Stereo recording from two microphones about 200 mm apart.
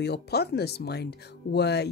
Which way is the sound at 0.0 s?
55° left (ahead or behind).